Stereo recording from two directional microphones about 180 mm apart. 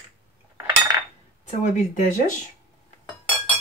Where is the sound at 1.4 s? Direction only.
45° left (ahead or behind).